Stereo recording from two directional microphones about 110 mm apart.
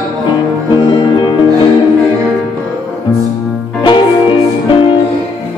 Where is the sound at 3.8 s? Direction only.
45° left (ahead or behind).